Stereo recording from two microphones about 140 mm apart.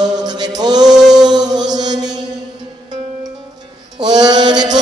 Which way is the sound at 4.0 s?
30° right (ahead or behind).